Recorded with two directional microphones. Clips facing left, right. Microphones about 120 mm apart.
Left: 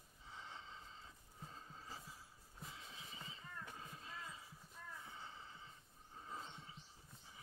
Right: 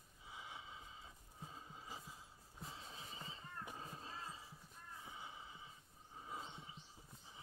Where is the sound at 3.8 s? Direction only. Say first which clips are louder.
Right 2 dB; 30° right (ahead or behind).